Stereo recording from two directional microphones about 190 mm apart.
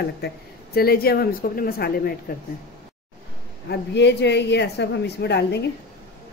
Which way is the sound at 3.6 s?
65° left (ahead or behind).